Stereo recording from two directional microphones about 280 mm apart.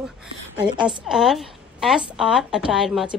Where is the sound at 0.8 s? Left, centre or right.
Centre.